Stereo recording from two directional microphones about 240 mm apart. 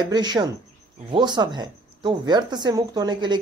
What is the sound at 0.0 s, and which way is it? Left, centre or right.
Speech, centre.